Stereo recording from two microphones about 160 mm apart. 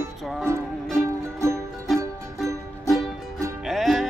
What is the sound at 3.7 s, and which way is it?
Music, centre (ahead or behind).